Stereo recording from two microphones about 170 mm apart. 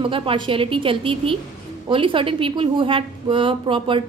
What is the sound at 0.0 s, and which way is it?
A woman's voice, 30° right (ahead or behind).